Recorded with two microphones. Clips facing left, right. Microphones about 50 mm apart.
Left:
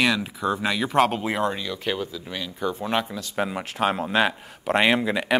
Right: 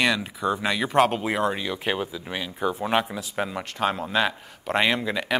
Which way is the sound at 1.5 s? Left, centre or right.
Centre.